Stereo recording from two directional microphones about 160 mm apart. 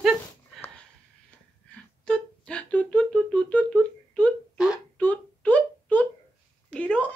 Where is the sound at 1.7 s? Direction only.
5° left (ahead or behind).